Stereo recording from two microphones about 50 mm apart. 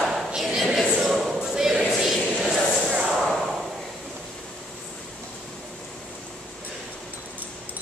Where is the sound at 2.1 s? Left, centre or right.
Centre.